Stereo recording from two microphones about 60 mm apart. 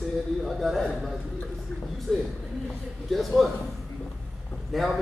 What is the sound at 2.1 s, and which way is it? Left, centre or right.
A man's voice, centre.